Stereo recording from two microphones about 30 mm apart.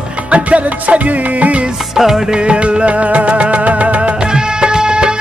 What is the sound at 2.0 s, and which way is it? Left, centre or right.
Music, centre.